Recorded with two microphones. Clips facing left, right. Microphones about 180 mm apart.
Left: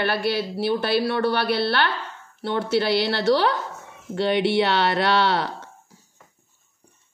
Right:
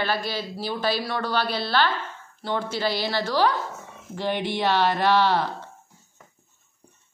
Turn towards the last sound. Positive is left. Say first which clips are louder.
# even
turn(degrees=75)  # may be behind; listen again after turning